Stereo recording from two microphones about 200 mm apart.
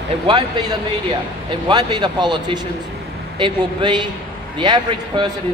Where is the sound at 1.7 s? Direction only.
20° right (ahead or behind).